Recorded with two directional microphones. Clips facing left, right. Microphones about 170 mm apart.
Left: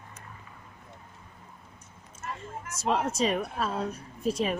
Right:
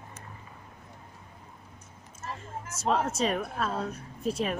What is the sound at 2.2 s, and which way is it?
Speech, 25° right (ahead or behind).